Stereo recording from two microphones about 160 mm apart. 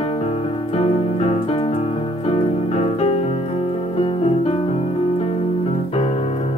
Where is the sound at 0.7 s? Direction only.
40° left (ahead or behind).